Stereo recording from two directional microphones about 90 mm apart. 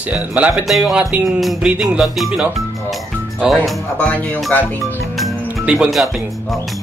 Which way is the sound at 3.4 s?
5° right (ahead or behind).